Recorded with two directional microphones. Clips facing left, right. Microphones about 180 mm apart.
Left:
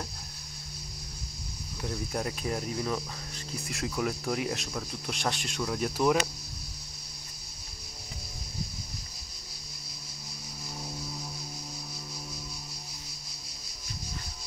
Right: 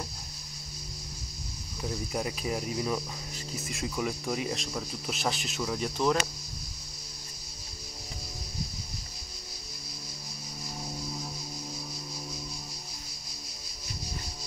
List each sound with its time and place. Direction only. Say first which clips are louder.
1.8 s cricket: even; 5° right (ahead or behind)